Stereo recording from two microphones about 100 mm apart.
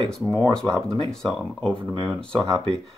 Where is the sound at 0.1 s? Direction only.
5° left (ahead or behind).